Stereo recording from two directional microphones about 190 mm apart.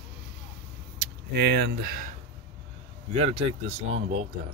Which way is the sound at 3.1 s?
35° right (ahead or behind).